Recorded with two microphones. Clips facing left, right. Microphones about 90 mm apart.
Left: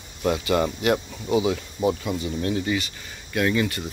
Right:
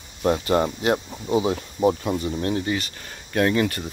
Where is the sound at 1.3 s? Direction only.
40° right (ahead or behind).